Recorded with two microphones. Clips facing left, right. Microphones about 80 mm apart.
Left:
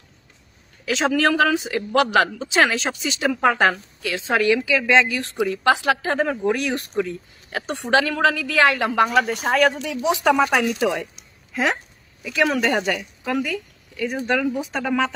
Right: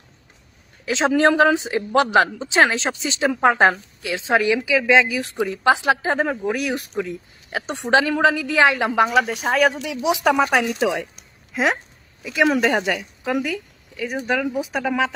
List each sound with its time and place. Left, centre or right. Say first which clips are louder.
0.8 s a woman's voice: right 2 dB; right
6.2 s a woman's voice: left 1 dB; centre
7.5 s a woman's voice: right 1 dB; centre
9.0 s a woman's voice: even; centre
11.5 s a sound: right 1 dB; centre
12.5 s a woman's voice: right 1 dB; centre